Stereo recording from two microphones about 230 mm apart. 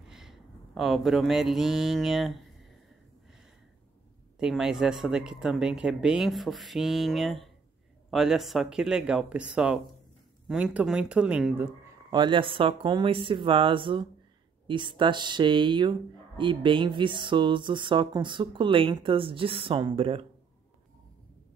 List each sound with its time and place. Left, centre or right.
0.0 s speech: centre
4.4 s speech: centre; by 20.2 s right